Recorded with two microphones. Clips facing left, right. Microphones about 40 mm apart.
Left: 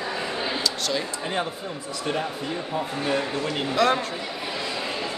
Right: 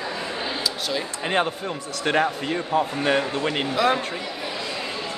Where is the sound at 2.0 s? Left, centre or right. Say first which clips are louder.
Right 6 dB; right.